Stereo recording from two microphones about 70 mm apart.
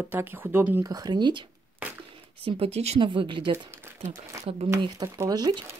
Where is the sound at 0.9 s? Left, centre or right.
Right.